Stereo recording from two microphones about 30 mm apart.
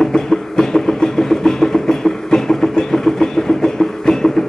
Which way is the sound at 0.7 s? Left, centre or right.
Centre.